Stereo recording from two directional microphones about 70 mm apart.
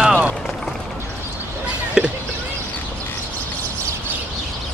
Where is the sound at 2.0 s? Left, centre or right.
Centre.